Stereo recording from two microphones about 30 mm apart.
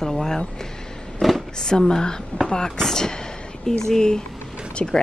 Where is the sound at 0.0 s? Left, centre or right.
Centre.